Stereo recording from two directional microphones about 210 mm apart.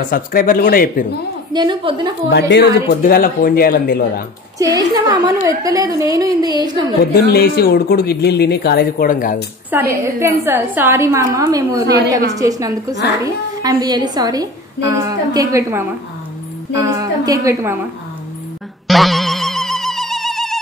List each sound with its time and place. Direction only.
0.1 s speech: 40° left (ahead or behind)
1.5 s a woman's voice: 20° right (ahead or behind)
2.2 s speech: 55° left (ahead or behind)
4.6 s a woman's voice: 15° right (ahead or behind)
7.2 s speech: 50° left (ahead or behind)
9.7 s a woman's voice: 10° right (ahead or behind)
18.9 s boing: centre (ahead or behind)